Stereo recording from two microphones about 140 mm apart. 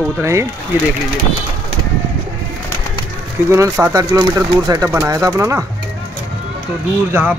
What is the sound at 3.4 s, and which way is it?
Speech, 20° right (ahead or behind).